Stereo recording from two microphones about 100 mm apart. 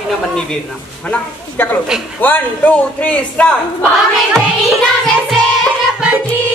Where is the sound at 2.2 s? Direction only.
20° left (ahead or behind).